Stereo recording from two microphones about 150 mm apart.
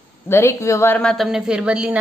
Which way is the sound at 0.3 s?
20° left (ahead or behind).